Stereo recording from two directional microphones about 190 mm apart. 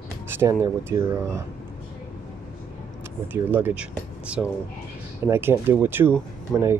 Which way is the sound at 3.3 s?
10° right (ahead or behind).